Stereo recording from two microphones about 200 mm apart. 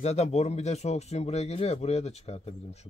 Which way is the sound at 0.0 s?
35° left (ahead or behind).